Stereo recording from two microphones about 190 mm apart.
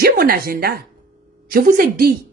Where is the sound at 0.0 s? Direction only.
50° right (ahead or behind).